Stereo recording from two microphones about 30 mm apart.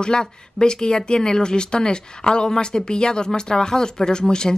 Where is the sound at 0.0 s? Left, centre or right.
Left.